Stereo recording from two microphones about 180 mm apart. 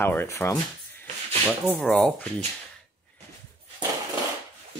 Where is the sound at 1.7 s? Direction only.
5° left (ahead or behind).